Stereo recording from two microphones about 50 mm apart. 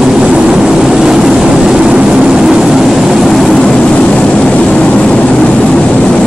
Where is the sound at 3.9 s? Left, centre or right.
Centre.